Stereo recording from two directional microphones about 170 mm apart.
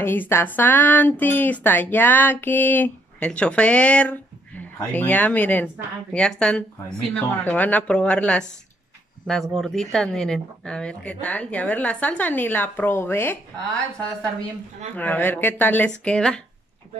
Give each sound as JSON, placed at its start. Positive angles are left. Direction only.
{"t": 0.0, "sound": "speech", "side_deg": 10}